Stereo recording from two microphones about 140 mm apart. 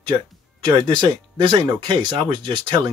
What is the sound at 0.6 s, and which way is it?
Speech, 35° right (ahead or behind).